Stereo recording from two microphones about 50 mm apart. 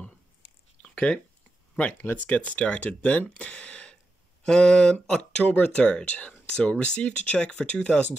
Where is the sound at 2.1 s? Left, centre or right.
Left.